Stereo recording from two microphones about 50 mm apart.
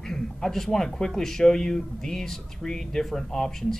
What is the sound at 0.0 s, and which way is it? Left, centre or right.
Speech, centre.